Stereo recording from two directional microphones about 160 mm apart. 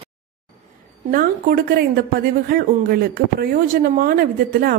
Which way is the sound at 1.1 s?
65° right (ahead or behind).